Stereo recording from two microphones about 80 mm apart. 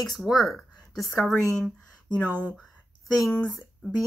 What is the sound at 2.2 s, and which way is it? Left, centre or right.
Speech, right.